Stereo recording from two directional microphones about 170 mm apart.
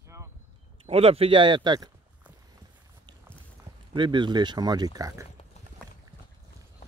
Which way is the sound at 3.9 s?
30° right (ahead or behind).